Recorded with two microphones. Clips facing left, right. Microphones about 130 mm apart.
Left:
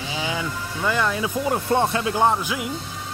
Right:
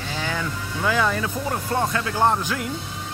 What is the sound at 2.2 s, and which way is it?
Speech, 5° left (ahead or behind).